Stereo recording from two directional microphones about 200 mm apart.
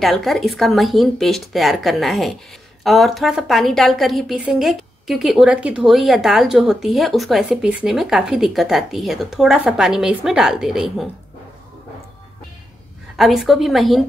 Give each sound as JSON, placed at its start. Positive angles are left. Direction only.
{"t": 0.0, "sound": "a woman's voice", "side_deg": 0}
{"t": 13.1, "sound": "a woman's voice", "side_deg": 0}